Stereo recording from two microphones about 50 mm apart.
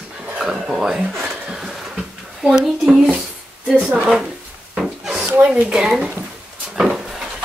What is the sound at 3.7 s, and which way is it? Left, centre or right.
Speech, right.